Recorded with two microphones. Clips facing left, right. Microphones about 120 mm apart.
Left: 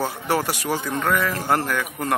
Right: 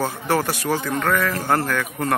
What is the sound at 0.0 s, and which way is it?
Speech, 15° left (ahead or behind).